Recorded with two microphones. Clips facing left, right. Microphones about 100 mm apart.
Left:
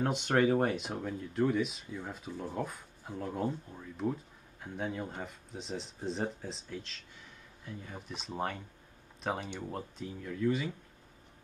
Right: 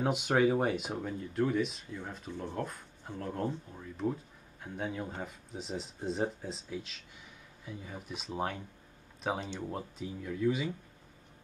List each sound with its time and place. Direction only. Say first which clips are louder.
0.0 s speech: right 1 dB; 5° right (ahead or behind)